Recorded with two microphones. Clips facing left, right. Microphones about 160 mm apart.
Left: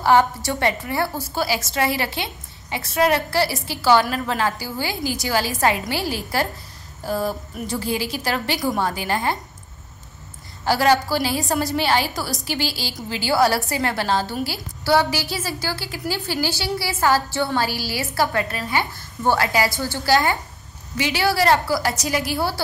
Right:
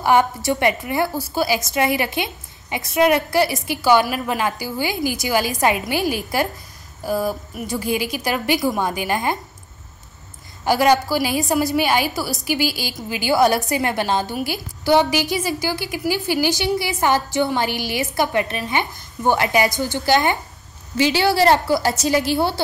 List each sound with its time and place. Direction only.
0.0 s a woman's voice: 15° right (ahead or behind)
10.6 s a woman's voice: 15° right (ahead or behind)